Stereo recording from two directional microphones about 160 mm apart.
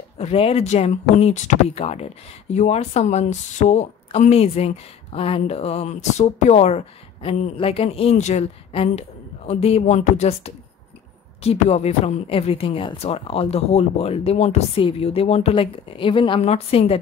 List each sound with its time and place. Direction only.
0.2 s speech: 40° left (ahead or behind)